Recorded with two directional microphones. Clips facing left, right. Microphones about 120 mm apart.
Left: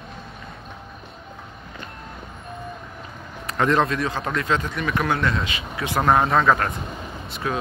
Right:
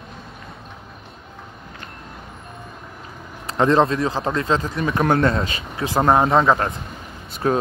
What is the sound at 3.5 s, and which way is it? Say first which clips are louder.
Speech: right 4 dB; 30° right (ahead or behind).